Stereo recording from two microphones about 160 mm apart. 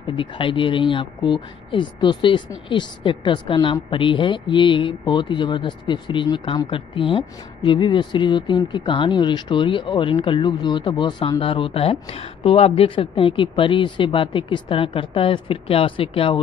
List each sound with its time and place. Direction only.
0.1 s a woman's voice: 30° left (ahead or behind)